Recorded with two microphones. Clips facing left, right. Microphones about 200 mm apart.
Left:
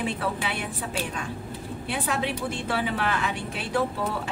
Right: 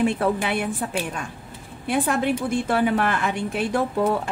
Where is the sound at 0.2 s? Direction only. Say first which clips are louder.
Right 7 dB; 50° right (ahead or behind).